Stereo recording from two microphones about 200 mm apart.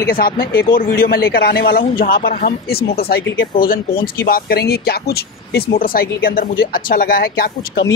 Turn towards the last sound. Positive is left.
turn(degrees=45)  # may be behind; listen again after turning